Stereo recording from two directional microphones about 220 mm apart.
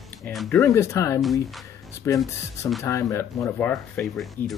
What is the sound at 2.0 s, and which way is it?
Speech, 15° left (ahead or behind).